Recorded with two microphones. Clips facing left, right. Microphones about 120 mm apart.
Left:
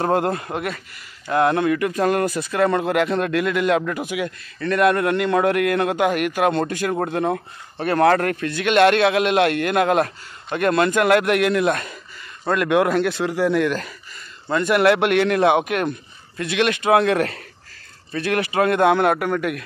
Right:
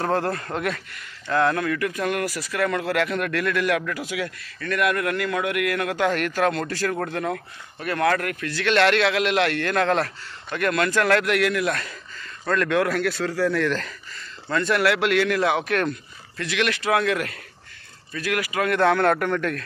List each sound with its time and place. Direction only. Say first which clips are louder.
0.0 s a man's voice: left 4 dB; 20° left (ahead or behind)
0.6 s speech: even; 5° left (ahead or behind)
1.3 s a man's voice: left 4 dB; 20° left (ahead or behind)
4.6 s a man's voice: left 6 dB; 30° left (ahead or behind)
18.8 s a man's voice: even; 15° left (ahead or behind)